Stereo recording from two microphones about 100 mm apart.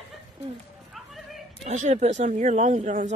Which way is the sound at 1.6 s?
90° right.